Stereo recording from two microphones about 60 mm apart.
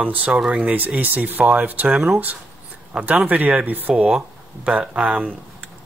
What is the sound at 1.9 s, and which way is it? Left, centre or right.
Speech, centre.